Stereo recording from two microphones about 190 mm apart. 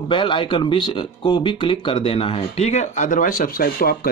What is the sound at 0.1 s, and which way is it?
Speech, 25° left (ahead or behind).